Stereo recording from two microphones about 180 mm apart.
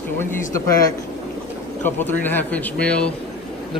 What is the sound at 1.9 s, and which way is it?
Speech, 10° left (ahead or behind).